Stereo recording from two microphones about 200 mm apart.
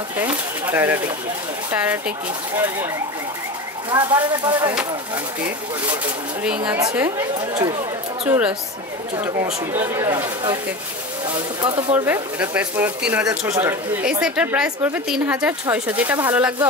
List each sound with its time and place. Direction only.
0.2 s speech: 10° right (ahead or behind)
3.9 s speech: 25° right (ahead or behind)
6.4 s a woman's voice: 5° right (ahead or behind)
7.3 s speech: 20° right (ahead or behind)
8.3 s speech: 10° right (ahead or behind)
11.6 s speech: 25° right (ahead or behind)
12.1 s a woman's voice: 10° right (ahead or behind)